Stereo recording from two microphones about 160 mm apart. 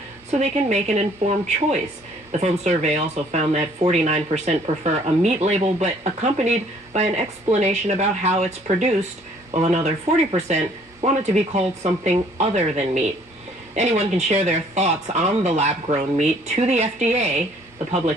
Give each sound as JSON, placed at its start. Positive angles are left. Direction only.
{"t": 0.3, "sound": "speech", "side_deg": -45}